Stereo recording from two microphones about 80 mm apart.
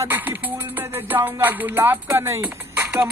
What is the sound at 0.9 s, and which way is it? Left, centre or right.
Music, right.